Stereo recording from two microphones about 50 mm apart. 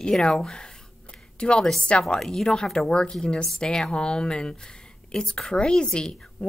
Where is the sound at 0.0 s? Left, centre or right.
Centre.